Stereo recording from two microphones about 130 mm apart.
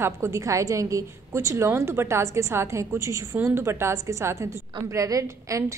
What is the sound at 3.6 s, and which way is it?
A woman's voice, 20° right (ahead or behind).